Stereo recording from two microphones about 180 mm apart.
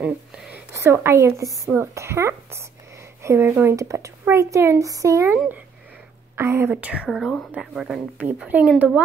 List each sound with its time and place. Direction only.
0.0 s a woman's voice: 5° right (ahead or behind)